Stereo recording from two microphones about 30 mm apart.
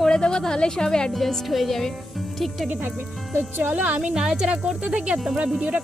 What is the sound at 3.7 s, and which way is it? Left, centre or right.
Speech, right.